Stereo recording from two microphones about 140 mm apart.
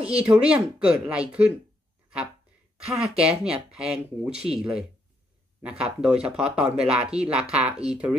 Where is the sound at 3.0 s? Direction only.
5° right (ahead or behind).